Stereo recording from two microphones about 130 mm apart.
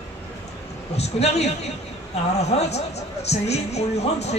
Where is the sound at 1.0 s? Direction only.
55° left (ahead or behind).